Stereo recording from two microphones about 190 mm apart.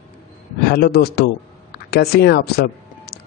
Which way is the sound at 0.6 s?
55° left (ahead or behind).